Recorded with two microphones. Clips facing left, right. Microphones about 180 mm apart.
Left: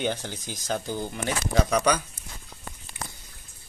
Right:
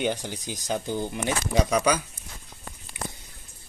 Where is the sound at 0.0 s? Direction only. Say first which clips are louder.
Right 1 dB; 15° right (ahead or behind).